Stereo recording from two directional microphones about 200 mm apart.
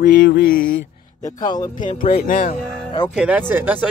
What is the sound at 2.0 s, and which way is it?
Speech, 45° left (ahead or behind).